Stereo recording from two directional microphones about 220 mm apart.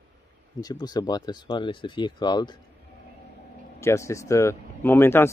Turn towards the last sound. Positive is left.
turn(degrees=10)  # may be behind; listen again after turning